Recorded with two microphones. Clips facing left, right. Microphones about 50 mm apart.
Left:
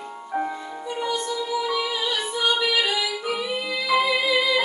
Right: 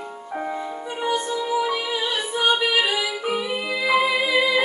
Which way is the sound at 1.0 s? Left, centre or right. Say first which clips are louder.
Right 3 dB; right.